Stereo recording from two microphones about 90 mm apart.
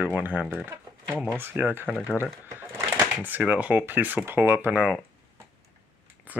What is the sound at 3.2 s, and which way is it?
Speech, 20° right (ahead or behind).